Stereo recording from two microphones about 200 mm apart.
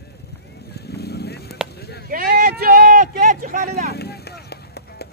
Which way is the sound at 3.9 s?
55° left (ahead or behind).